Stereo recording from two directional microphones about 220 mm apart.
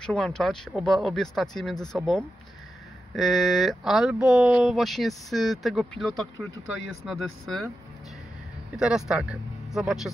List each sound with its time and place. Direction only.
0.0 s speech: 5° left (ahead or behind)
8.7 s speech: 5° right (ahead or behind)